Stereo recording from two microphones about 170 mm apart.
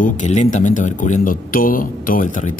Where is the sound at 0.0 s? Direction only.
45° left (ahead or behind).